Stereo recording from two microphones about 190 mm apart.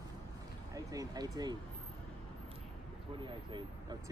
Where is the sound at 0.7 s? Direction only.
20° right (ahead or behind).